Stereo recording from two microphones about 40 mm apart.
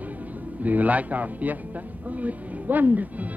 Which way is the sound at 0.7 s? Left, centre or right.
Right.